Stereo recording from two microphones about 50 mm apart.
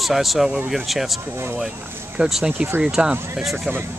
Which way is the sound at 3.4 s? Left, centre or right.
Centre.